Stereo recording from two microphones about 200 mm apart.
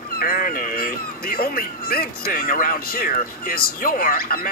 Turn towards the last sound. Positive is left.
turn(degrees=45)  # may be behind; listen again after turning